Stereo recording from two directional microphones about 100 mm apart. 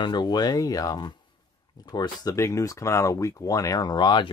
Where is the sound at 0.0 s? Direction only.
45° left (ahead or behind).